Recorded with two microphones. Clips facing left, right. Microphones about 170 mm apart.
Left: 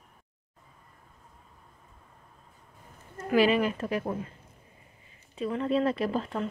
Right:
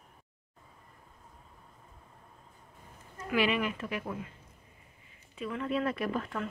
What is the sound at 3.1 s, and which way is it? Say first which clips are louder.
Speech: left 6 dB; 40° left (ahead or behind).